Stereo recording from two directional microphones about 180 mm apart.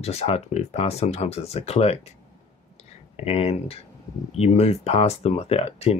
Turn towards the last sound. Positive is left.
turn(degrees=35)  # may be behind; listen again after turning